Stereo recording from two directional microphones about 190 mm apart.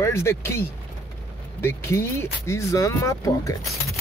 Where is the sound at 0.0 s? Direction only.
15° left (ahead or behind).